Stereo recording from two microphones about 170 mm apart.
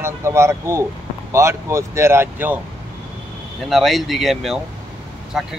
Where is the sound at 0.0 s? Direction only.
15° right (ahead or behind).